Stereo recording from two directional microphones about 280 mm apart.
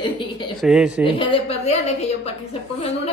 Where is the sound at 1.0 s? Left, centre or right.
Centre.